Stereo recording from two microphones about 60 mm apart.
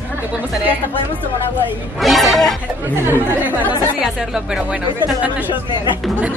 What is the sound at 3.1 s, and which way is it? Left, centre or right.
Speech, right.